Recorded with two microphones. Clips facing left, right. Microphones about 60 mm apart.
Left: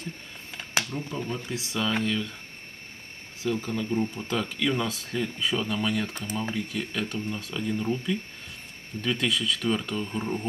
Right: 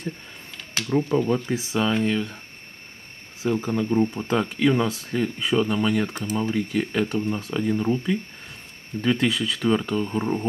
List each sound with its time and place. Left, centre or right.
0.8 s speech: right
1.5 s speech: right
3.4 s speech: right